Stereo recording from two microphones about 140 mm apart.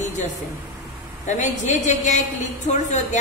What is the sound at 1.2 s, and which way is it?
A woman's voice, 60° left (ahead or behind).